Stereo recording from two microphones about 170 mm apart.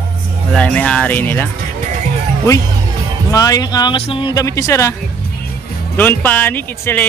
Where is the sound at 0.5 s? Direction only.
10° left (ahead or behind).